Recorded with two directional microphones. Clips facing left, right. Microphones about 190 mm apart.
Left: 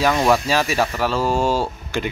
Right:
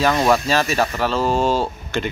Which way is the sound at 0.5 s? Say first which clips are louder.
Even; 10° left (ahead or behind).